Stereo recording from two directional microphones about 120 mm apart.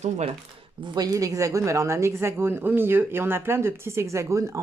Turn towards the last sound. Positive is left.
turn(degrees=-25)  # may be behind; listen again after turning